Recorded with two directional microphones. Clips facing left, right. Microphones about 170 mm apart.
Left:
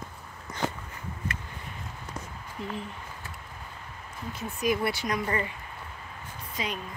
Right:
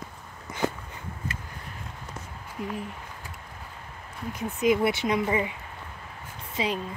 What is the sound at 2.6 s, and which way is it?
Speech, 10° right (ahead or behind).